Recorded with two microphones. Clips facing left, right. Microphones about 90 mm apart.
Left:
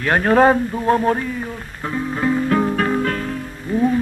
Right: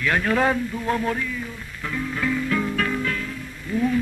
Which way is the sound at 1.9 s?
35° left (ahead or behind).